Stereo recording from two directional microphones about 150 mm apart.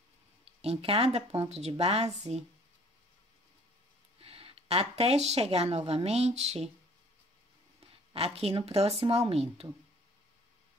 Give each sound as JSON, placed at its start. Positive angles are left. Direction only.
{"t": 0.5, "sound": "speech", "side_deg": -40}
{"t": 4.2, "sound": "speech", "side_deg": -40}
{"t": 8.1, "sound": "speech", "side_deg": -40}